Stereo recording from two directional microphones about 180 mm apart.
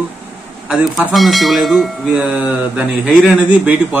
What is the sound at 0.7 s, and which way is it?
Speech, 5° right (ahead or behind).